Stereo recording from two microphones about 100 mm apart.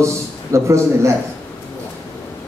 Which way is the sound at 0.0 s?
30° right (ahead or behind).